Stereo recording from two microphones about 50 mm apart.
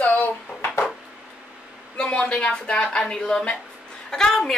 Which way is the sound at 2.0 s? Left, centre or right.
Left.